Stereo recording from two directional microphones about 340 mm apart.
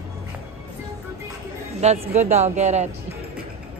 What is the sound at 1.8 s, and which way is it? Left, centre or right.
A woman's voice, centre.